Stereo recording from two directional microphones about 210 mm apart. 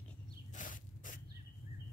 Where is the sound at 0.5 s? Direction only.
40° left (ahead or behind).